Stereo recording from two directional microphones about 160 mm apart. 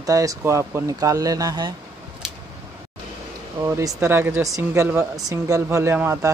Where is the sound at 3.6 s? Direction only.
20° right (ahead or behind).